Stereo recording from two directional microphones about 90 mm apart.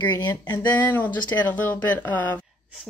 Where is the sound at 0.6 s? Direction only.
20° left (ahead or behind).